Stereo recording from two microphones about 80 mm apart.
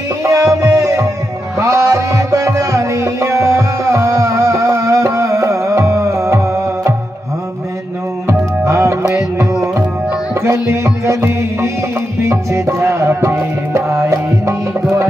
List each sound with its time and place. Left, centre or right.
0.2 s music: right
8.3 s music: right